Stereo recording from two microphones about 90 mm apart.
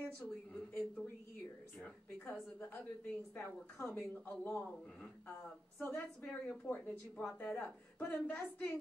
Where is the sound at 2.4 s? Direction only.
20° left (ahead or behind).